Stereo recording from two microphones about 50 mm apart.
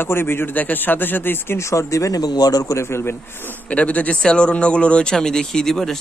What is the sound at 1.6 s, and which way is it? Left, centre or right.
Speech, left.